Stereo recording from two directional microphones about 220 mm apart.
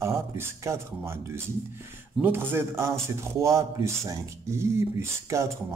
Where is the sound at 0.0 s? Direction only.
10° right (ahead or behind).